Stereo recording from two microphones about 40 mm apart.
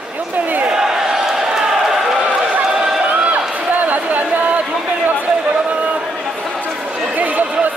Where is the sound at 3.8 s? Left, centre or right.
Right.